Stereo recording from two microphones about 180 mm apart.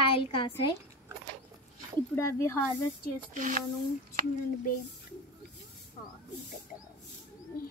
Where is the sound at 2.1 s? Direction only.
15° left (ahead or behind).